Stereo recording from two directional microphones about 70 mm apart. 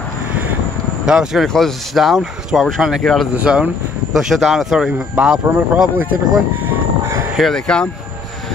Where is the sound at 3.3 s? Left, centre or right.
Centre.